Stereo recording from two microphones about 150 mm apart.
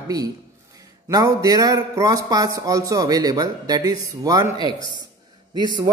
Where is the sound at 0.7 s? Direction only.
25° right (ahead or behind).